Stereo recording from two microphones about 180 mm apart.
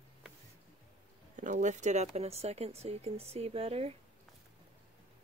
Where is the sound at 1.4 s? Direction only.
45° right (ahead or behind).